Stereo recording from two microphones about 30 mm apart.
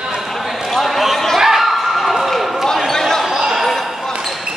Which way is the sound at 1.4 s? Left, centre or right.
Centre.